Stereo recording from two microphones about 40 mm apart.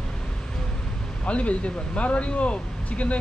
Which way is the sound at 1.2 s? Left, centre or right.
Left.